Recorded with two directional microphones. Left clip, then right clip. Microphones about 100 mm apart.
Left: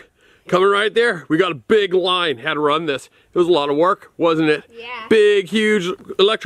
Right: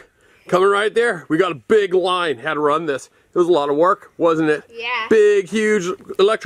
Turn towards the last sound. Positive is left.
turn(degrees=10)  # may be behind; listen again after turning